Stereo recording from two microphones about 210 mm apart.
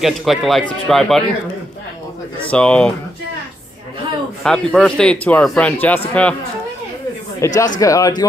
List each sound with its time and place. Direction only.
0.0 s a man's voice: centre (ahead or behind)
2.5 s a man's voice: 5° left (ahead or behind)
4.4 s a man's voice: 5° left (ahead or behind)
7.3 s speech: 15° left (ahead or behind)